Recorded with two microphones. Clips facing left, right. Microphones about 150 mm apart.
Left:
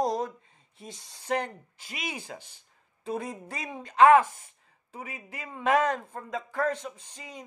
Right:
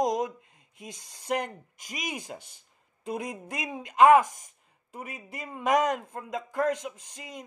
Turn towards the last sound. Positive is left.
turn(degrees=-10)  # may be behind; listen again after turning